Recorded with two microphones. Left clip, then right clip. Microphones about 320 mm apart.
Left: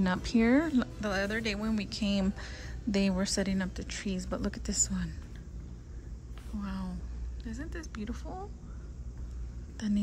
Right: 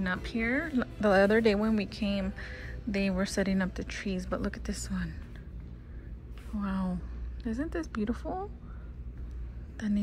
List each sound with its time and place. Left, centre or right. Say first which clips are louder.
0.0 s speech: left 3 dB; centre
6.6 s speech: right 7 dB; centre
9.8 s speech: right 1 dB; centre